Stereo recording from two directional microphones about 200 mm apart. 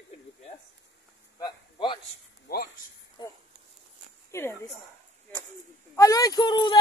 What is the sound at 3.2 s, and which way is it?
Speech, 20° left (ahead or behind).